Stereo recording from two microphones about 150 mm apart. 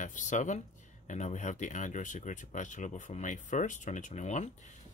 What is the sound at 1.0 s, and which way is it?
Speech, 55° left (ahead or behind).